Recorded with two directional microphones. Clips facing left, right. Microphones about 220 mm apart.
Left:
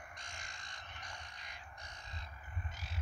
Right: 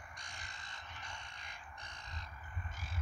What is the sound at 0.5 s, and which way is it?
Frog, 25° right (ahead or behind).